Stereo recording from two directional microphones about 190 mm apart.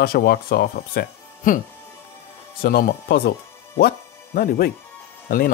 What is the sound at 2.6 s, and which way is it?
Speech, 50° left (ahead or behind).